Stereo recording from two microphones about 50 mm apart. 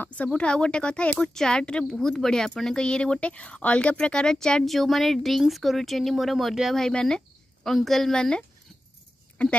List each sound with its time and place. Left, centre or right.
0.1 s a woman's voice: left
4.6 s speech: centre
6.7 s a woman's voice: centre